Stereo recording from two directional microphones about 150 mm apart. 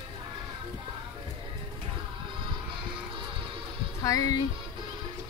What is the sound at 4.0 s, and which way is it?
Speech, 20° left (ahead or behind).